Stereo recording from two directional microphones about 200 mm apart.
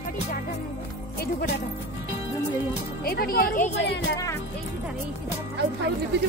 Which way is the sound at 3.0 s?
50° left (ahead or behind).